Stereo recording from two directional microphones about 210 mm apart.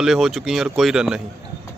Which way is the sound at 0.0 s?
Centre (ahead or behind).